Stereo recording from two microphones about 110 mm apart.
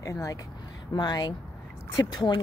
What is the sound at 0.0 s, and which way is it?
A woman's voice, 30° left (ahead or behind).